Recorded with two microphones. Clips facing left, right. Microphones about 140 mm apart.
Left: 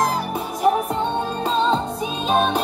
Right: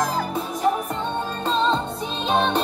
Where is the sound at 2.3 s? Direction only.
10° left (ahead or behind).